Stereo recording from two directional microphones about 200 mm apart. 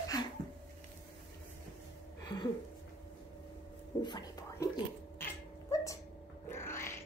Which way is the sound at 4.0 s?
20° left (ahead or behind).